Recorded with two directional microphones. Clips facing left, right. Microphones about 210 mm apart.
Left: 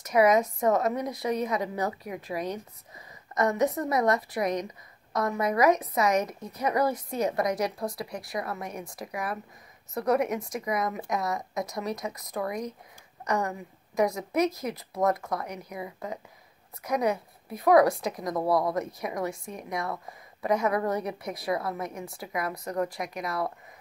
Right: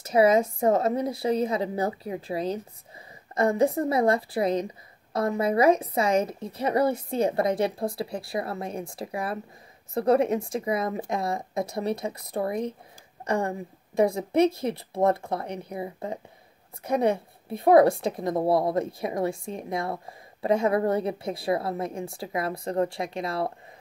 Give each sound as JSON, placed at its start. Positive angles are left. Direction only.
{"t": 0.0, "sound": "a woman's voice", "side_deg": -30}